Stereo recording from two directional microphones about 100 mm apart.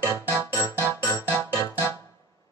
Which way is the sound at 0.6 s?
30° left (ahead or behind).